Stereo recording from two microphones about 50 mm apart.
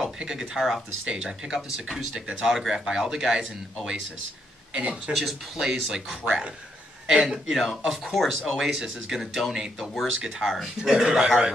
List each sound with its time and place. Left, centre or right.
0.0 s speech: centre
5.1 s a man's voice: centre
7.4 s speech: centre